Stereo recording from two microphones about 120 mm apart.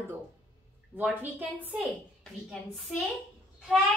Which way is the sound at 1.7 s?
Centre (ahead or behind).